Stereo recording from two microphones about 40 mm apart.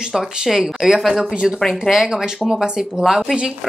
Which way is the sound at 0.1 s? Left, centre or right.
Centre.